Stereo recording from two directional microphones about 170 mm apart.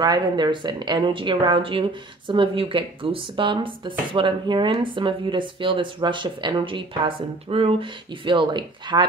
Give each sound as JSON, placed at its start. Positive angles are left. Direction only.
{"t": 0.0, "sound": "a woman's voice", "side_deg": -25}